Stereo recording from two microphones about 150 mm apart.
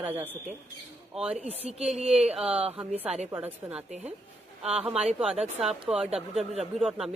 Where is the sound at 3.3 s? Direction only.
10° right (ahead or behind).